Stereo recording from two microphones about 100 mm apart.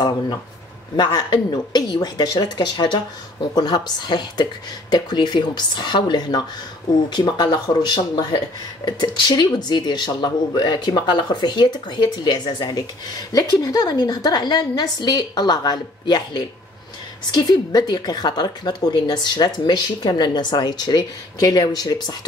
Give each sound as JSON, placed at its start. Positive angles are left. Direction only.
{"t": 0.9, "sound": "speech", "side_deg": 45}